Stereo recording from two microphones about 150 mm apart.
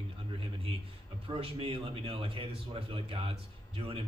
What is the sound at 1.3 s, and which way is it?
A man's voice, 40° right (ahead or behind).